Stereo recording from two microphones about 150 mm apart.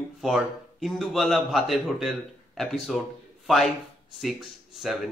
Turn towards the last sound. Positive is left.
turn(degrees=0)  # may be behind; listen again after turning